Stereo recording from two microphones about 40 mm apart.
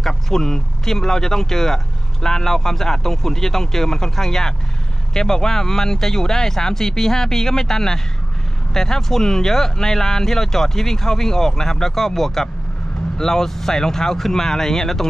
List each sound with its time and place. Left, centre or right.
0.0 s speech: centre